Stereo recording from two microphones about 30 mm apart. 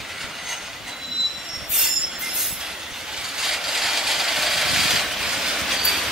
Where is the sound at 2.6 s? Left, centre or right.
Right.